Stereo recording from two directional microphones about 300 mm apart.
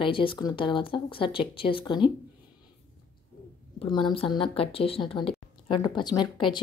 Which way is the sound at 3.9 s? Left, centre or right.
Centre.